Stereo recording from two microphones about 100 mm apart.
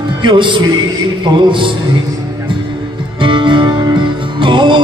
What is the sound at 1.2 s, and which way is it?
Music, 55° right (ahead or behind).